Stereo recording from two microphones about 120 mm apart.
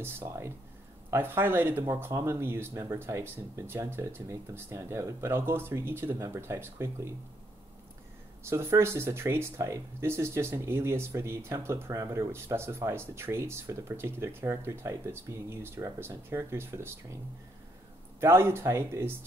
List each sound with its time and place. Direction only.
0.0 s speech: 20° right (ahead or behind)
8.5 s speech: 20° right (ahead or behind)
18.2 s speech: 20° right (ahead or behind)